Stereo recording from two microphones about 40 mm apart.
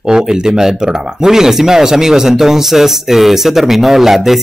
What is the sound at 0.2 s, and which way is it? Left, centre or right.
Speech, centre.